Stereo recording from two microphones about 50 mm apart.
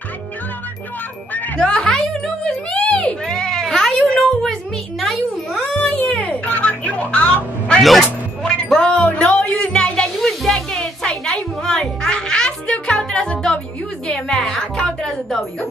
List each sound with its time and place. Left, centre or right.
1.6 s music: centre
2.8 s a sound: left
3.3 s cat: centre
5.0 s music: centre
5.8 s a sound: left
7.8 s a man's voice: centre
8.7 s music: centre
10.2 s music: centre